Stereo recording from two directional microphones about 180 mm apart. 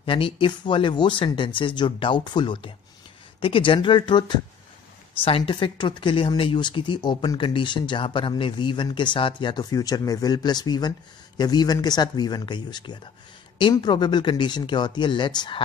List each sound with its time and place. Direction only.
0.0 s speech: 30° left (ahead or behind)